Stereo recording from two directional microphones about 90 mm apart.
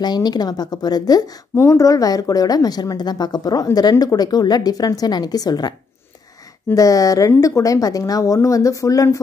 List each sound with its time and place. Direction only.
0.0 s a woman's voice: 50° left (ahead or behind)